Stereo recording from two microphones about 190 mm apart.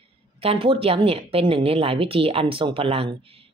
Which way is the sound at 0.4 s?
30° right (ahead or behind).